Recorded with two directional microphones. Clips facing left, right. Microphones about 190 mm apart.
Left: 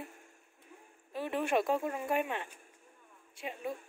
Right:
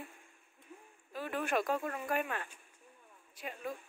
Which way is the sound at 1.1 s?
25° left (ahead or behind).